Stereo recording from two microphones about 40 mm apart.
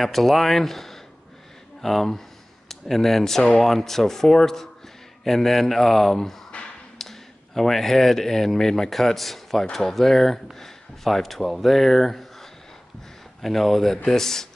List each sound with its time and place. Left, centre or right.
0.0 s speech: centre
6.5 s finger snapping: left
7.0 s speech: centre